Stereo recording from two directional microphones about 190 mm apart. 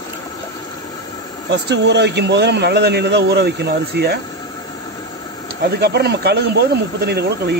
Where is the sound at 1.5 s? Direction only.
65° right (ahead or behind).